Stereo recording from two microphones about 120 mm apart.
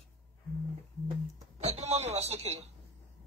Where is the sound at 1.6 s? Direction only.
65° right (ahead or behind).